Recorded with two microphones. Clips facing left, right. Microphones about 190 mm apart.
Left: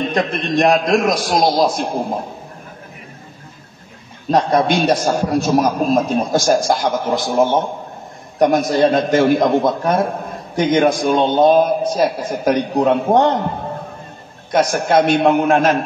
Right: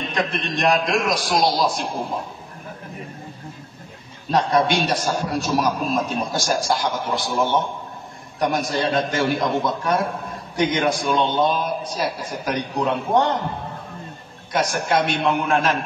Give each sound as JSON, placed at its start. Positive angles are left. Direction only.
{"t": 0.1, "sound": "a man's voice", "side_deg": 45}
{"t": 4.3, "sound": "a man's voice", "side_deg": 45}
{"t": 14.5, "sound": "a man's voice", "side_deg": 45}